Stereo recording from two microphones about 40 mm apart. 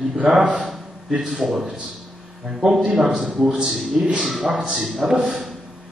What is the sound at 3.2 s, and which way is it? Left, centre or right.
A man's voice, centre.